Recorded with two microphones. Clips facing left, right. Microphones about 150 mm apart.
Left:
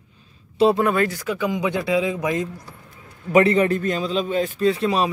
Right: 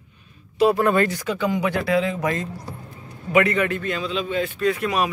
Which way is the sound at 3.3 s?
35° left (ahead or behind).